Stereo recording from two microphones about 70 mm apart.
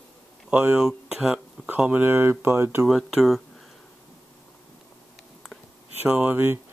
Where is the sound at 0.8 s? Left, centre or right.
Centre.